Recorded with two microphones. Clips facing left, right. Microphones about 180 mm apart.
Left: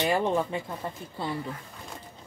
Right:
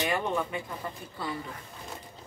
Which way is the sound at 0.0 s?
30° left (ahead or behind).